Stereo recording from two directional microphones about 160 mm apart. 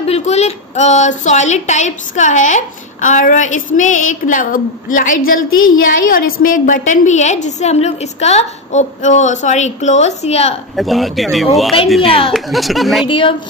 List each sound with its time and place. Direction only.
0.0 s a woman's voice: 40° left (ahead or behind)
10.8 s speech: centre (ahead or behind)
12.0 s a woman's voice: 35° left (ahead or behind)
12.3 s speech: centre (ahead or behind)
13.0 s a woman's voice: 30° left (ahead or behind)